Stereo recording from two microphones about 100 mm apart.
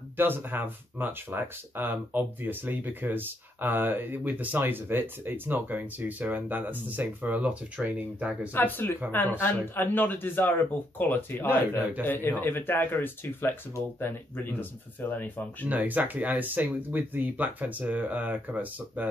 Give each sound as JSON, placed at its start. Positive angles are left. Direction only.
{"t": 0.2, "sound": "speech", "side_deg": -20}
{"t": 8.5, "sound": "speech", "side_deg": 20}
{"t": 15.7, "sound": "speech", "side_deg": -15}